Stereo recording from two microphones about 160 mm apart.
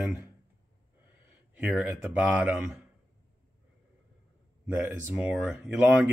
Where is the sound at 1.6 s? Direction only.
5° right (ahead or behind).